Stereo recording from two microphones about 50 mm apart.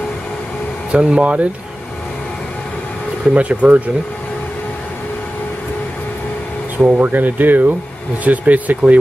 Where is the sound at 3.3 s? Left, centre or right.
Right.